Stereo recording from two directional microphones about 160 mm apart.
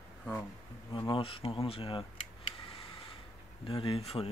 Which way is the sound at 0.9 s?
30° left (ahead or behind).